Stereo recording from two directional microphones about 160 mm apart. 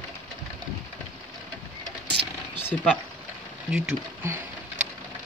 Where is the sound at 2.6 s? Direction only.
10° left (ahead or behind).